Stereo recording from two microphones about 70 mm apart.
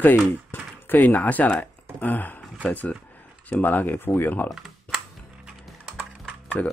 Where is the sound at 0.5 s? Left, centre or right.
Left.